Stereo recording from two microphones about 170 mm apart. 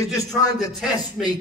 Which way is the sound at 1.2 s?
Centre (ahead or behind).